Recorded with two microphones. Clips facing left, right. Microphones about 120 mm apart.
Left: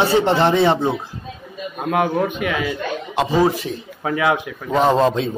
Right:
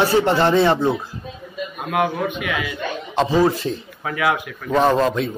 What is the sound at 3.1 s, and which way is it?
Speech, 15° left (ahead or behind).